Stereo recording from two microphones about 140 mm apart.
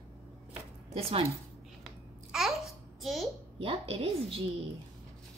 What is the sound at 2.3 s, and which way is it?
Babbling, centre (ahead or behind).